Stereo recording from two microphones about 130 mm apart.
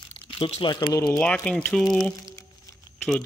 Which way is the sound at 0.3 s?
45° left (ahead or behind).